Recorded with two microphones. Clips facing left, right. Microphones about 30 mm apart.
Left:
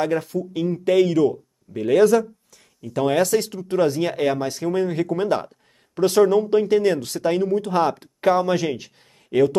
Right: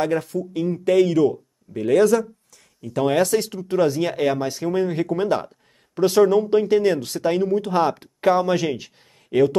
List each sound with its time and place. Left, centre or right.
0.0 s speech: centre